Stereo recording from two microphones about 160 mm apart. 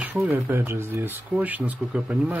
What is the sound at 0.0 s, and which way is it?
Speech, 10° right (ahead or behind).